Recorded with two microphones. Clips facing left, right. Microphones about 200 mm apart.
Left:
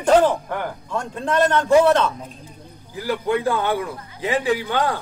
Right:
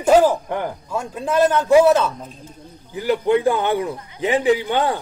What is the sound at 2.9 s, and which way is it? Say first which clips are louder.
A man's voice: right 4 dB; 20° right (ahead or behind).